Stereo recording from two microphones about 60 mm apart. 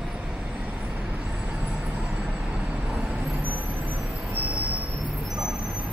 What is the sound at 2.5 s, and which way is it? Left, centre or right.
Vehicle, right.